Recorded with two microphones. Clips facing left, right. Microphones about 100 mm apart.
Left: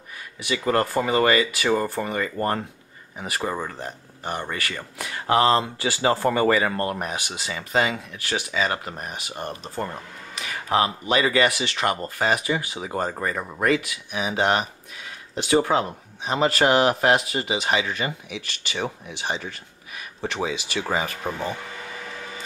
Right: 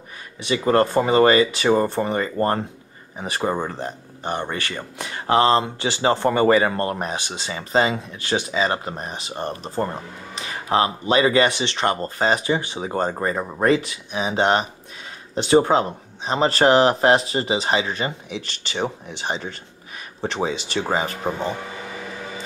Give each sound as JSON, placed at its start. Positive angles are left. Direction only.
{"t": 0.4, "sound": "speech", "side_deg": -30}